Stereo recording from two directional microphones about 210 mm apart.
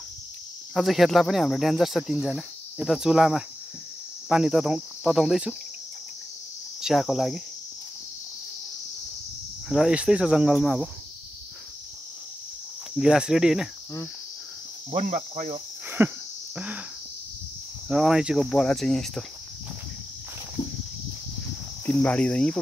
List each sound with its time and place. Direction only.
0.7 s cricket: centre (ahead or behind)
6.8 s cricket: centre (ahead or behind)
9.7 s cricket: 5° right (ahead or behind)
12.9 s cricket: 5° right (ahead or behind)
14.9 s cricket: 35° right (ahead or behind)
16.0 s speech: 10° right (ahead or behind)
16.5 s cricket: 5° right (ahead or behind)
17.8 s cricket: 5° right (ahead or behind)
21.8 s cricket: 5° left (ahead or behind)